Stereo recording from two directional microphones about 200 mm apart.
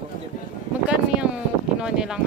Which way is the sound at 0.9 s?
5° right (ahead or behind).